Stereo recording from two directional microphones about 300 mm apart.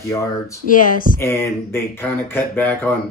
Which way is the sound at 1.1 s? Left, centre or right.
Centre.